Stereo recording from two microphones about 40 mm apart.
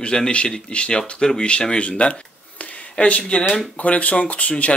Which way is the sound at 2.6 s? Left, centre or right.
Left.